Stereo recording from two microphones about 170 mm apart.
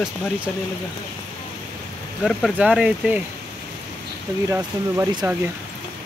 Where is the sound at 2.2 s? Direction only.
Centre (ahead or behind).